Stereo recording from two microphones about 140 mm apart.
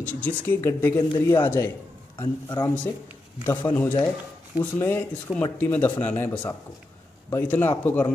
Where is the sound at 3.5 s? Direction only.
10° left (ahead or behind).